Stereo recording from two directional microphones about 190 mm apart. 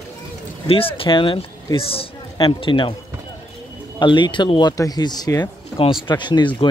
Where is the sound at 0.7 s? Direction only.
30° left (ahead or behind).